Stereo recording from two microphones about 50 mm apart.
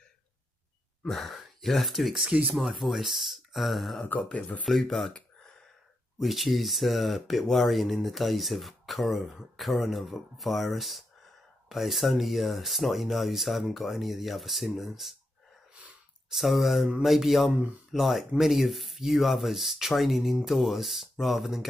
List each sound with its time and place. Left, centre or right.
1.0 s a sound: centre
1.6 s speech: centre
2.2 s speech: right
2.5 s speech: centre
4.0 s speech: left
4.6 s speech: centre
6.1 s speech: centre
16.3 s speech: centre
17.5 s speech: right
17.9 s speech: centre